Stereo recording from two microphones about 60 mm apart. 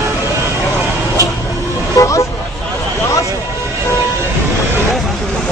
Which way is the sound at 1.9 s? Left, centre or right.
Left.